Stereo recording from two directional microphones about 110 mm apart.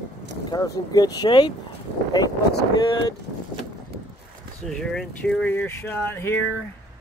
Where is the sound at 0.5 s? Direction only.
35° left (ahead or behind).